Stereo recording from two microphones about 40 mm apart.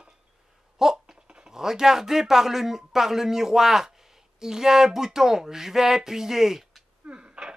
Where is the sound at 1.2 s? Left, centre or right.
Centre.